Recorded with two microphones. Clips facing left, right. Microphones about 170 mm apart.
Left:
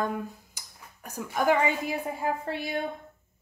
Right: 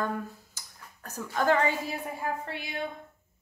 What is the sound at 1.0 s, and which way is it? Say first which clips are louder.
A woman's voice: left 1 dB; 15° left (ahead or behind).